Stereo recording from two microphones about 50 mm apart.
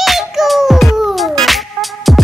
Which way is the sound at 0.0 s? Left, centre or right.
Centre.